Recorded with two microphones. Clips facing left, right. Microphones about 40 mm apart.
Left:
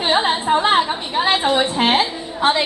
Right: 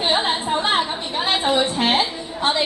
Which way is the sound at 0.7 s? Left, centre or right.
Centre.